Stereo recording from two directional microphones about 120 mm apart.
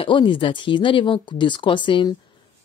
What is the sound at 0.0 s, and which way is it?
Speech, 45° left (ahead or behind).